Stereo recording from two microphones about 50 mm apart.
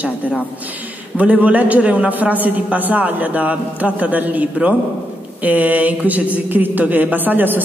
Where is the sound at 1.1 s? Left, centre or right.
Right.